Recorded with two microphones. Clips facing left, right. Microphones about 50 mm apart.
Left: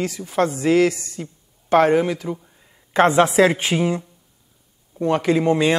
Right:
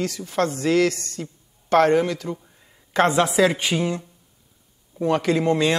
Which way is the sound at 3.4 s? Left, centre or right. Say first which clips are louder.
Left 3 dB; left.